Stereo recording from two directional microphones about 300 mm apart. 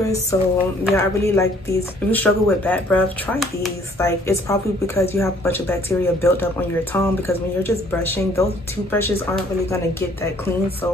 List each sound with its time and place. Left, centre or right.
0.0 s speech: centre